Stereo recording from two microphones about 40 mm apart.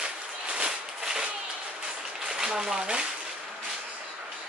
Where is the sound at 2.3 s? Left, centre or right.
Centre.